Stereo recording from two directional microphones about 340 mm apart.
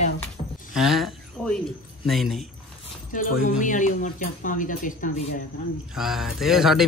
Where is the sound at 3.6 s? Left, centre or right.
Left.